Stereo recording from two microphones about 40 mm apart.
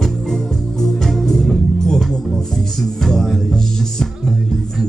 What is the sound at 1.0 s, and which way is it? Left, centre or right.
Music, centre.